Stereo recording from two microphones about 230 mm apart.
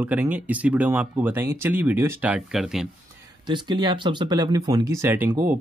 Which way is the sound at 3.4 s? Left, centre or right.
Centre.